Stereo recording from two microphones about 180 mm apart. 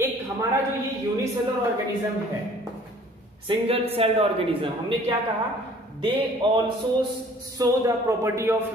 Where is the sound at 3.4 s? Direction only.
30° right (ahead or behind).